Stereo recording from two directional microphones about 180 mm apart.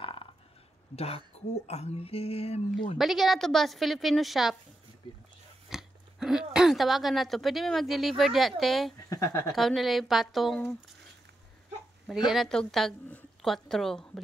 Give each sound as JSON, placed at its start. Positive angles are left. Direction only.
{"t": 0.0, "sound": "burping", "side_deg": 30}
{"t": 0.9, "sound": "speech", "side_deg": 35}
{"t": 3.0, "sound": "speech", "side_deg": 0}
{"t": 5.7, "sound": "speech", "side_deg": 0}
{"t": 9.1, "sound": "speech", "side_deg": 15}
{"t": 9.6, "sound": "speech", "side_deg": 0}
{"t": 12.3, "sound": "a woman's voice", "side_deg": 0}